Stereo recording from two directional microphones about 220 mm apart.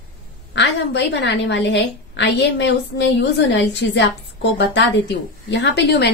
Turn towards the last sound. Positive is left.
turn(degrees=50)  # may be behind; listen again after turning